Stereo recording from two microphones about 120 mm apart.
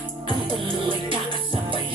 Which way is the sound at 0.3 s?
45° right (ahead or behind).